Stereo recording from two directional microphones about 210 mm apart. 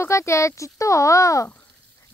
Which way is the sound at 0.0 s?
15° left (ahead or behind).